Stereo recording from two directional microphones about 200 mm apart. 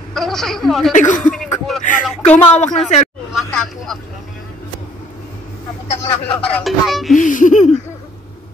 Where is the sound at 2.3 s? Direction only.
35° left (ahead or behind).